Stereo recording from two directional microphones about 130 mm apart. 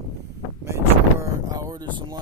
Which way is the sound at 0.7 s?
25° right (ahead or behind).